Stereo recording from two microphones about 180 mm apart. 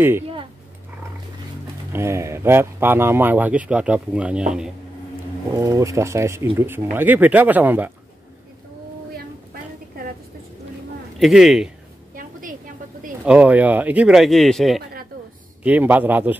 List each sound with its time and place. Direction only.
1.9 s speech: 15° right (ahead or behind)
5.5 s speech: 15° right (ahead or behind)
9.1 s a sound: 55° right (ahead or behind)
11.1 s speech: centre (ahead or behind)
12.2 s a sound: 50° right (ahead or behind)
13.2 s speech: 5° right (ahead or behind)